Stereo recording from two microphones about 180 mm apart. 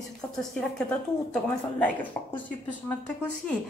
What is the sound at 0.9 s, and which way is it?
A woman's voice, 10° left (ahead or behind).